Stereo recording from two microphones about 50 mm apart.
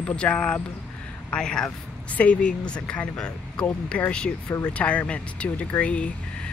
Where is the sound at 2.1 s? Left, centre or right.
Left.